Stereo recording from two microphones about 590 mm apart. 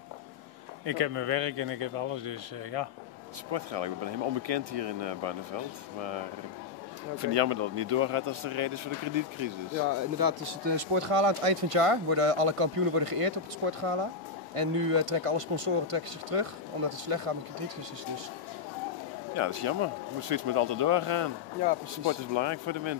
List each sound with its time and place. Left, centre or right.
0.8 s speech: right
7.2 s speech: right
10.1 s speech: right
10.8 s speech: right
19.3 s speech: right